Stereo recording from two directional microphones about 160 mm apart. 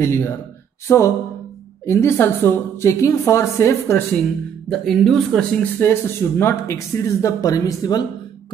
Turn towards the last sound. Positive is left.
turn(degrees=20)  # may be behind; listen again after turning